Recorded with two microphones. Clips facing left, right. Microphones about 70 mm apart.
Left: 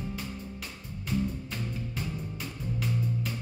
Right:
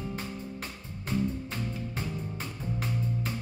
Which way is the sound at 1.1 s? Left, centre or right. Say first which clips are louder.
Right 1 dB; right.